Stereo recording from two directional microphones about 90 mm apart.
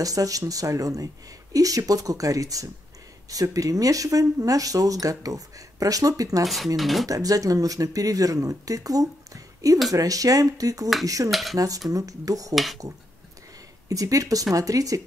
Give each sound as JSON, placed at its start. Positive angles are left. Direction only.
{"t": 0.0, "sound": "speech", "side_deg": -40}
{"t": 6.4, "sound": "speech", "side_deg": 0}
{"t": 7.1, "sound": "speech", "side_deg": -40}
{"t": 11.2, "sound": "speech", "side_deg": 0}
{"t": 11.5, "sound": "speech", "side_deg": -40}
{"t": 12.5, "sound": "speech", "side_deg": 0}
{"t": 13.8, "sound": "speech", "side_deg": -40}